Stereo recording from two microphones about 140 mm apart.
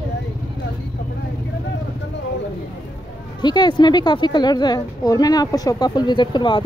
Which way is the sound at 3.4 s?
30° left (ahead or behind).